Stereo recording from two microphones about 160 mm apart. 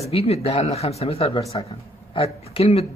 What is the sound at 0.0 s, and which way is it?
Speech, 40° left (ahead or behind).